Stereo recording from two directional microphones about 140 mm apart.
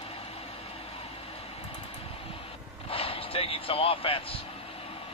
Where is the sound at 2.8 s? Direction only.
45° left (ahead or behind).